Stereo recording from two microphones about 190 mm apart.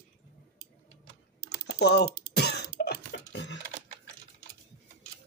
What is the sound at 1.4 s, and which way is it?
Typing, 60° left (ahead or behind).